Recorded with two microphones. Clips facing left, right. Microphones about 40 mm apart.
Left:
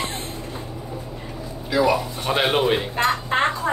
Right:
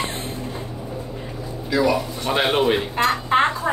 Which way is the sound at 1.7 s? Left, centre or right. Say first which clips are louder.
Even; centre.